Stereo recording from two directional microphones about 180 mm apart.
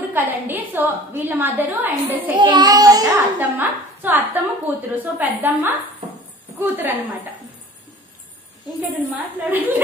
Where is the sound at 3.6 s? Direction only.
10° right (ahead or behind).